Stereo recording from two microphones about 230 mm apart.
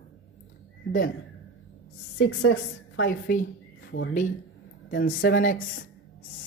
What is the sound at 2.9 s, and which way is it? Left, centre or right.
Speech, left.